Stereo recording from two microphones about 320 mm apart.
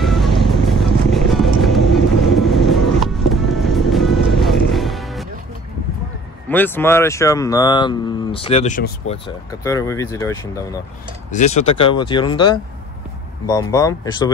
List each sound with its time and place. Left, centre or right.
0.0 s vehicle: centre
3.0 s music: centre
6.5 s speech: centre; by 9.2 s left
9.6 s speech: centre
11.2 s speech: left